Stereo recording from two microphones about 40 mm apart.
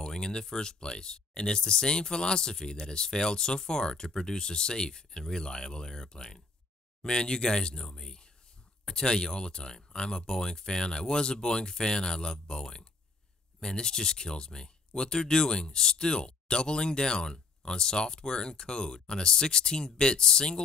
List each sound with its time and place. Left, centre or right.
0.0 s speech: centre